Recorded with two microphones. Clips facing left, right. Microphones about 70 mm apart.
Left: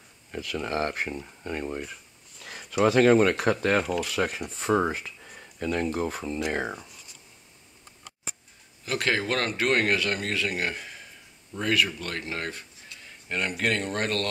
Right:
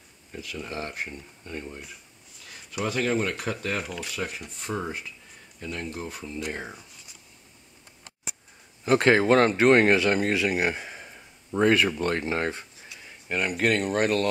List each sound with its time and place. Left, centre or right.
0.3 s speech: left
3.8 s speech: centre
4.1 s speech: left
5.9 s speech: left
8.8 s a man's voice: right
12.8 s speech: centre